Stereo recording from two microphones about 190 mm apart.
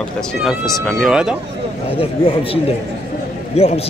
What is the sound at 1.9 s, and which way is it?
Speech, 30° left (ahead or behind).